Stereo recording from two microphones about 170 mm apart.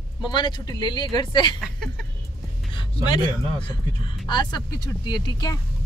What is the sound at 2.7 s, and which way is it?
Speech, 25° left (ahead or behind).